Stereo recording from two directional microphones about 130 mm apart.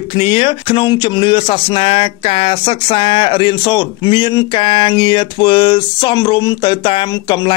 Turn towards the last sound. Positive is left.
turn(degrees=35)  # may be behind; listen again after turning